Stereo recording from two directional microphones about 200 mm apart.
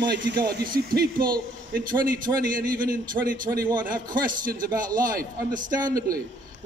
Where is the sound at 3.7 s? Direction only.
20° right (ahead or behind).